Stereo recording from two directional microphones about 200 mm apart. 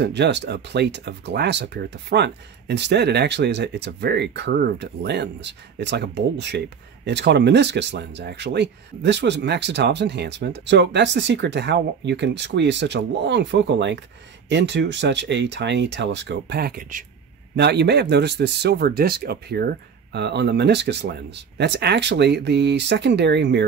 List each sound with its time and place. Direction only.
0.0 s speech: 60° right (ahead or behind)